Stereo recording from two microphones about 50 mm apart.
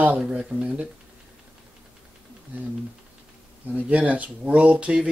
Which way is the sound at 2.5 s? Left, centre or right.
Right.